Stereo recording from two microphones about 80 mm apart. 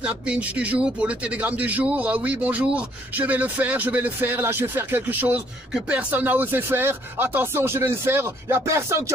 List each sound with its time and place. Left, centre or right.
0.0 s speech: centre; by 9.0 s right